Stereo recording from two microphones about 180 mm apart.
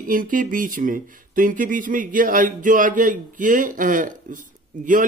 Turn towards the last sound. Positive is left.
turn(degrees=-45)  # may be behind; listen again after turning